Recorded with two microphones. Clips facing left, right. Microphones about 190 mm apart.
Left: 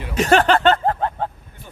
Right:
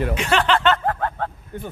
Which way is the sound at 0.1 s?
45° left (ahead or behind).